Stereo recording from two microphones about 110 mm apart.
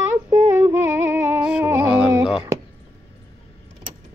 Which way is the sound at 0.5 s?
20° right (ahead or behind).